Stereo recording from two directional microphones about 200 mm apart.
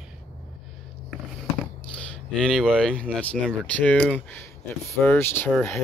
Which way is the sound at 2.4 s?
Centre (ahead or behind).